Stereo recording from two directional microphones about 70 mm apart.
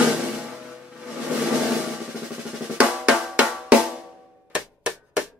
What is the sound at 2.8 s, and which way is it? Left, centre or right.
Drum, centre.